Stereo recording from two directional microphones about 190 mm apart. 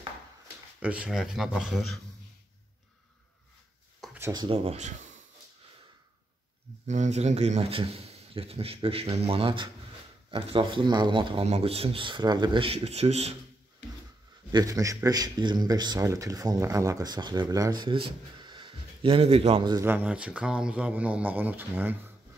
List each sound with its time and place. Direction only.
0.7 s speech: 5° right (ahead or behind)
4.0 s a sound: 5° right (ahead or behind)
4.3 s a man's voice: 25° right (ahead or behind)
6.9 s a man's voice: 35° right (ahead or behind)
14.5 s speech: 20° right (ahead or behind)
19.8 s speech: 10° right (ahead or behind)